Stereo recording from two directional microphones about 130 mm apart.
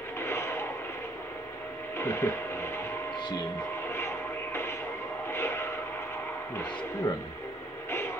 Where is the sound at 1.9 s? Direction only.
20° left (ahead or behind).